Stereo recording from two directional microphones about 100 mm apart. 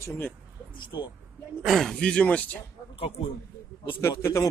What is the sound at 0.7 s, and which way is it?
Speech, 55° left (ahead or behind).